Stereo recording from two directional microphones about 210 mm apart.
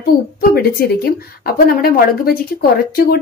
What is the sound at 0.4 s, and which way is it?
A woman's voice, 45° left (ahead or behind).